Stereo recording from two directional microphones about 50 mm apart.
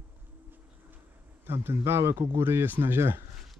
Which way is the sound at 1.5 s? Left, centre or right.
Right.